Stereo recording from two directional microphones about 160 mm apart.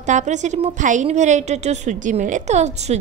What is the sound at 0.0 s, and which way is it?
A woman's voice, 50° right (ahead or behind).